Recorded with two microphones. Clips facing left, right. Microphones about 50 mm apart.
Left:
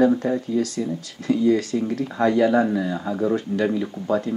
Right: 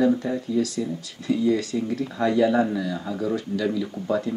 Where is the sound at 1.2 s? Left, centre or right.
Left.